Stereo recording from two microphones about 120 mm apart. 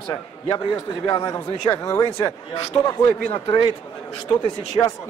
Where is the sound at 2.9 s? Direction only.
45° left (ahead or behind).